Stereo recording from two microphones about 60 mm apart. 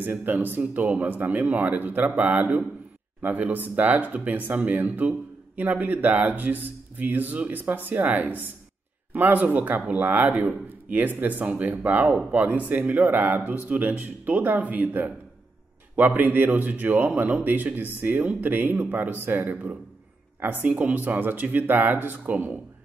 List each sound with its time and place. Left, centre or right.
0.0 s speech: right